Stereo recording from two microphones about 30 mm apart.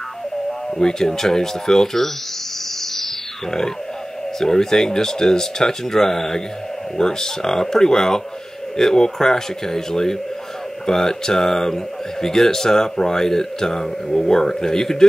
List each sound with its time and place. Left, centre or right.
0.5 s speech: centre
4.4 s speech: centre